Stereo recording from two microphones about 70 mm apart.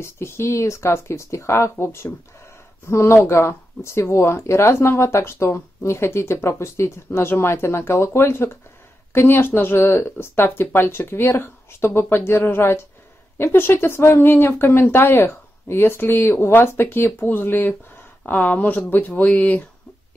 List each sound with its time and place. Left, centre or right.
0.0 s speech: left